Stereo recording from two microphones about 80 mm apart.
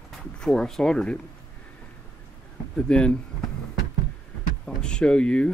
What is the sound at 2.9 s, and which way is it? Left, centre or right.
Speech, centre.